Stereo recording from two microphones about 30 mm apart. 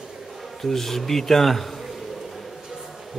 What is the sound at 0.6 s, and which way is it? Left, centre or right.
Speech, centre.